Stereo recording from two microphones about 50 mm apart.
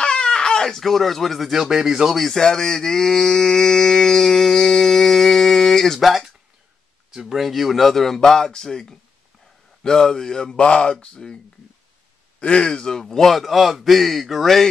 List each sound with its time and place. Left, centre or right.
0.0 s baby cry: centre
1.5 s speech: centre
2.1 s a sound: centre
7.1 s a man's voice: centre